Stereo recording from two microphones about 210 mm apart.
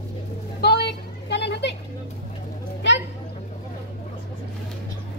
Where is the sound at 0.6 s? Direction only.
50° left (ahead or behind).